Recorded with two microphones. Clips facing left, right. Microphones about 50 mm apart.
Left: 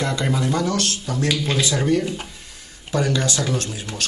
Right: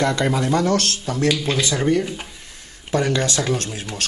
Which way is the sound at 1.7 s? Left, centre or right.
Centre.